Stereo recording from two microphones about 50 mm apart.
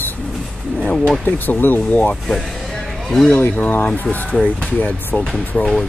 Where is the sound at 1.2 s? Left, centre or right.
Left.